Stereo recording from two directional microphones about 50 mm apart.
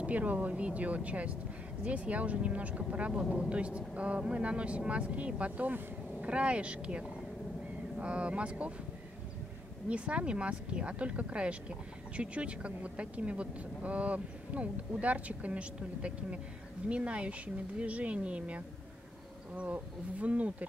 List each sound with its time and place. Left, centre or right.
0.0 s speech: right
9.8 s speech: right